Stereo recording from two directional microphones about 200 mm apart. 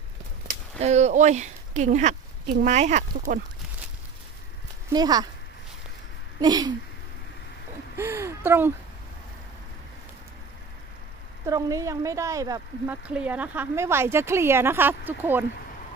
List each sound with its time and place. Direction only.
0.7 s speech: 35° right (ahead or behind)
4.8 s speech: 20° right (ahead or behind)
6.4 s speech: 20° right (ahead or behind)
7.9 s speech: 10° right (ahead or behind)
11.4 s speech: 15° right (ahead or behind)